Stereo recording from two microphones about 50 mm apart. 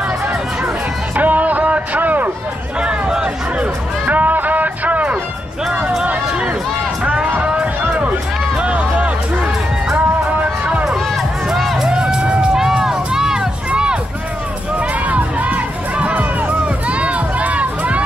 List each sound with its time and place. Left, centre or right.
1.1 s music: right
2.8 s music: centre
4.0 s music: right
7.4 s music: right
11.5 s music: centre
11.9 s music: centre
12.7 s run: centre
13.7 s music: centre
15.0 s music: right